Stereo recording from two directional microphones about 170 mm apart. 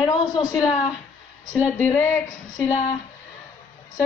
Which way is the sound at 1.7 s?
10° left (ahead or behind).